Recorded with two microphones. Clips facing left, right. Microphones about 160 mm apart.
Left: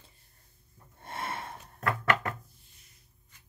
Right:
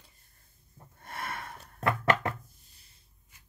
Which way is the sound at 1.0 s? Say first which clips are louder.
Left 2 dB; 25° left (ahead or behind).